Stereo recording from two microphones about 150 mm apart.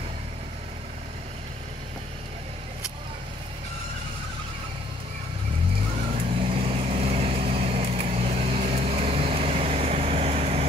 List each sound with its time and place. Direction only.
6.4 s vehicle: 40° right (ahead or behind)